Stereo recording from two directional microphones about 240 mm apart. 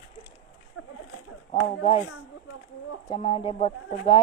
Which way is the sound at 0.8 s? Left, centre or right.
Left.